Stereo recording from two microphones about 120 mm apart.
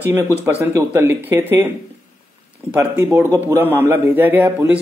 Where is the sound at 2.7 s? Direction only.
20° right (ahead or behind).